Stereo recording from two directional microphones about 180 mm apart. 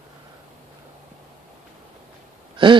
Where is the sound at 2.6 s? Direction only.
25° right (ahead or behind).